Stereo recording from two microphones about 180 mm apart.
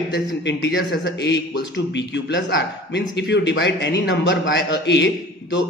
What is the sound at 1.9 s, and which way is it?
A man's voice, 85° left.